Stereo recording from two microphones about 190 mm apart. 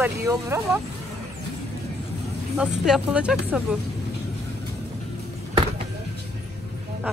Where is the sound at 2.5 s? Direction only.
5° right (ahead or behind).